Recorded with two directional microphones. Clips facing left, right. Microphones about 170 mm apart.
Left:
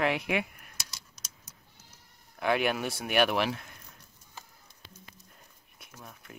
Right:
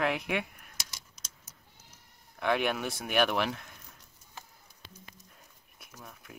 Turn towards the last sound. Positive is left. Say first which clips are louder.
# left 1 dB
turn(degrees=0)  # may be behind; listen again after turning